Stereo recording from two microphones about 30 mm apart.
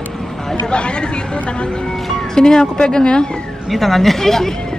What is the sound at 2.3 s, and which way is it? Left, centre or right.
Speech, left.